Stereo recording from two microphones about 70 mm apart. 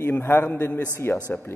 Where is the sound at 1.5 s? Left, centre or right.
Left.